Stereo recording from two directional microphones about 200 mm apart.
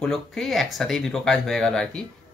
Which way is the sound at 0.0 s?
Centre (ahead or behind).